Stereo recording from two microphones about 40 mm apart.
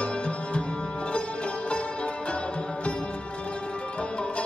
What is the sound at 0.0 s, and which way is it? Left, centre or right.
Music, left.